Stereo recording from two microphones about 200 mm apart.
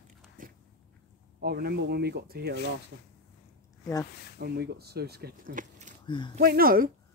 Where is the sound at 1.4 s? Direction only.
50° right (ahead or behind).